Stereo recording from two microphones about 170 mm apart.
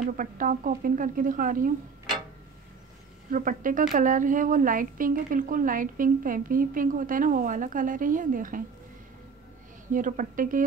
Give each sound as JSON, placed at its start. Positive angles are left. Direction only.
{"t": 0.0, "sound": "speech", "side_deg": -50}
{"t": 3.3, "sound": "speech", "side_deg": -55}
{"t": 9.9, "sound": "speech", "side_deg": -50}